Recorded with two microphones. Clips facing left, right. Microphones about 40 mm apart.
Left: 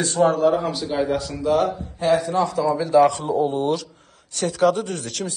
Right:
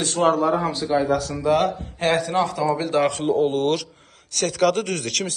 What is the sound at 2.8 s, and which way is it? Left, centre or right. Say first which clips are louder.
A man's voice: left 4 dB; right.